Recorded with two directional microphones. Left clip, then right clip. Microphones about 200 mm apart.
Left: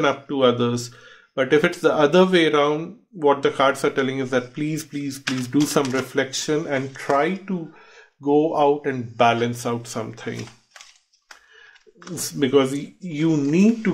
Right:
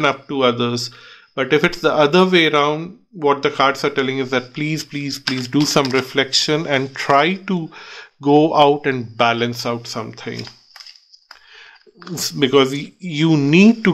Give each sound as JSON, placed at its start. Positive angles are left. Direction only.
{"t": 0.0, "sound": "speech", "side_deg": -15}
{"t": 7.4, "sound": "speech", "side_deg": -50}
{"t": 8.8, "sound": "speech", "side_deg": -25}
{"t": 12.0, "sound": "speech", "side_deg": -25}
{"t": 13.2, "sound": "speech", "side_deg": -45}